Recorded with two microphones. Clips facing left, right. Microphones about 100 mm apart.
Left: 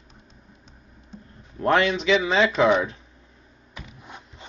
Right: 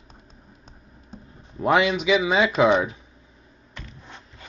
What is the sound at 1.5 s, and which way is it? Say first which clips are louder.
Speech: right 1 dB; 10° right (ahead or behind).